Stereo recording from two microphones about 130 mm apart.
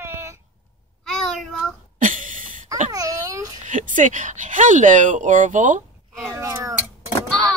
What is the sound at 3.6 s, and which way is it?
Speech, 80° right.